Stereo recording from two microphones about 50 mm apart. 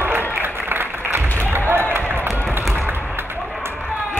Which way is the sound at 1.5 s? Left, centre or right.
Right.